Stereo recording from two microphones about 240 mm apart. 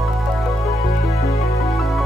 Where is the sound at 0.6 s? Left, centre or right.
Centre.